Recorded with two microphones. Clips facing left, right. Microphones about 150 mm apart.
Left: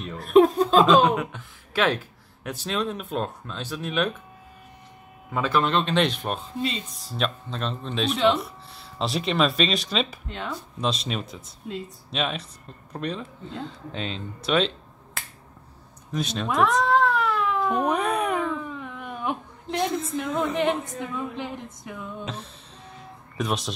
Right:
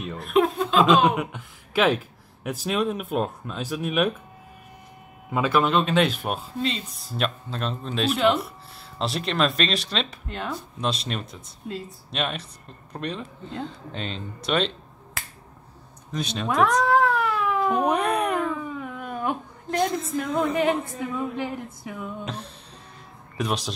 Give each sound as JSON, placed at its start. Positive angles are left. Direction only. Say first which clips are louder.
{"t": 0.2, "sound": "laughter", "louder": "left 5 dB", "side_deg": 40}
{"t": 0.8, "sound": "speech", "louder": "left 1 dB", "side_deg": -5}
{"t": 5.3, "sound": "speech", "louder": "right 2 dB", "side_deg": -10}
{"t": 16.1, "sound": "cat", "louder": "even", "side_deg": 0}
{"t": 20.1, "sound": "speech", "louder": "right 2 dB", "side_deg": 0}